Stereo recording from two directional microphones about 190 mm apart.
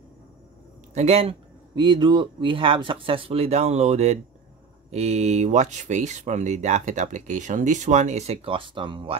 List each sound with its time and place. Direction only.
0.9 s speech: 35° right (ahead or behind)